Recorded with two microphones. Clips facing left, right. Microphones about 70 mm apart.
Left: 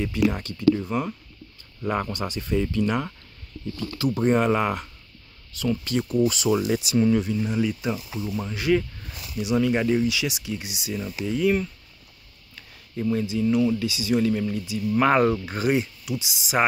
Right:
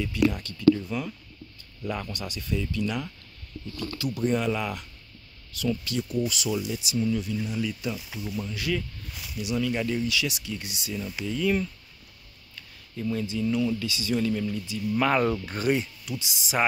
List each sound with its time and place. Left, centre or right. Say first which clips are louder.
0.0 s speech: left 2 dB; left
2.1 s speech: left 6 dB; left
6.7 s speech: left 7 dB; left
7.2 s speech: left 6 dB; left
10.0 s speech: left 3 dB; centre
12.9 s speech: left 4 dB; left; by 16.6 s centre